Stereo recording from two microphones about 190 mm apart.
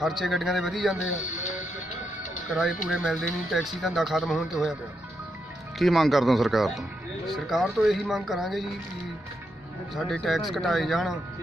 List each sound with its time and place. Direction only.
0.0 s speech: centre (ahead or behind)
1.2 s speech: 40° left (ahead or behind)
2.4 s speech: centre (ahead or behind)
5.8 s speech: centre (ahead or behind)
9.9 s speech: centre (ahead or behind)